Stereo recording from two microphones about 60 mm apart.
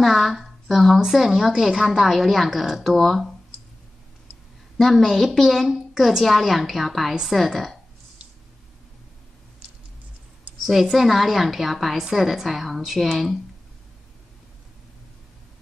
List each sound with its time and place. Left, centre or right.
0.0 s a woman's voice: centre
4.7 s a woman's voice: centre
10.6 s a woman's voice: centre